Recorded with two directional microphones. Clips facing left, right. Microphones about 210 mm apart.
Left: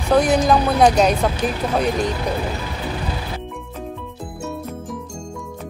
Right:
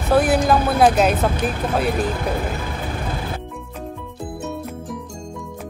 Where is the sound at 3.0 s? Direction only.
50° right (ahead or behind).